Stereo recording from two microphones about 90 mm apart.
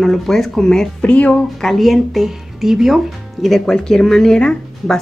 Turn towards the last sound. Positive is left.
turn(degrees=10)  # may be behind; listen again after turning